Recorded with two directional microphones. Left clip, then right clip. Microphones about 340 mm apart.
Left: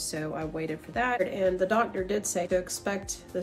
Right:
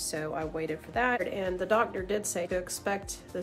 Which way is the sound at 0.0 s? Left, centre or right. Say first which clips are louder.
Even; centre.